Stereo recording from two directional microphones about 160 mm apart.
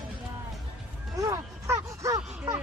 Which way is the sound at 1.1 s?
20° right (ahead or behind).